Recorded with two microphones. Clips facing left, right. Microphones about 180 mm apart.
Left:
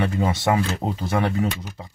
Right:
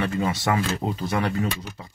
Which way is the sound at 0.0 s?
20° left (ahead or behind).